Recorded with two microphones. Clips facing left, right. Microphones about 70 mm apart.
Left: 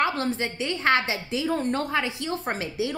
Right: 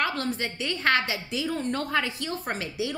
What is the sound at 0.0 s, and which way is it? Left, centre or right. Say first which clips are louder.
A woman's voice: left 3 dB; left.